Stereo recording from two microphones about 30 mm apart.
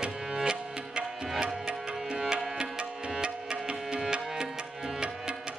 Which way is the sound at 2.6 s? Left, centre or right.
Right.